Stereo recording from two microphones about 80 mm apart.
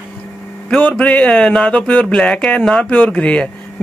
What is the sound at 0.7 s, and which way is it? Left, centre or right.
Speech, centre.